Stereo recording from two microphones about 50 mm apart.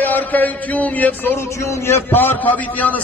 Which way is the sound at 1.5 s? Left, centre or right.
Left.